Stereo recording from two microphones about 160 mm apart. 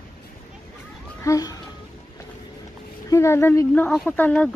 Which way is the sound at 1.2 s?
20° left (ahead or behind).